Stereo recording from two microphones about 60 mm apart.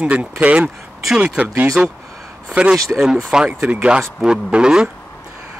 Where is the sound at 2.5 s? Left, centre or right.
Centre.